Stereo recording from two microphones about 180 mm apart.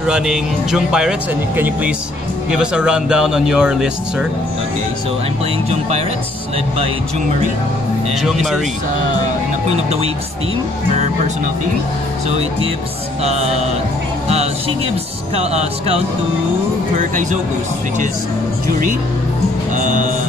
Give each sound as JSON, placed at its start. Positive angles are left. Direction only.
{"t": 0.0, "sound": "speech", "side_deg": -5}
{"t": 5.7, "sound": "speech", "side_deg": -35}
{"t": 9.8, "sound": "speech", "side_deg": -35}
{"t": 13.2, "sound": "speech", "side_deg": -35}
{"t": 15.3, "sound": "speech", "side_deg": -35}
{"t": 19.7, "sound": "music", "side_deg": -45}